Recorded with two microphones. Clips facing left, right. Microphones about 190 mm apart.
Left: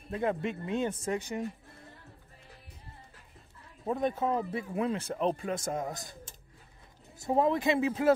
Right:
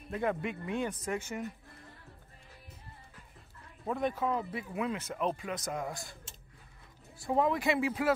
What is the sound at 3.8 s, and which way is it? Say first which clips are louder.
Speech: left 2 dB; 25° left (ahead or behind).